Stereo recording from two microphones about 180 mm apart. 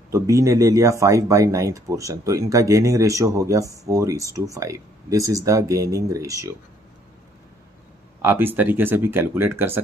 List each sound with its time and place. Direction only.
0.1 s speech: 15° right (ahead or behind)
8.2 s speech: 10° right (ahead or behind)